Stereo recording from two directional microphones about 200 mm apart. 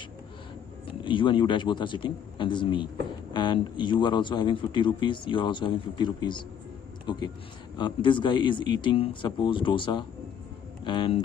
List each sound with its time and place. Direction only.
1.0 s a man's voice: 25° left (ahead or behind)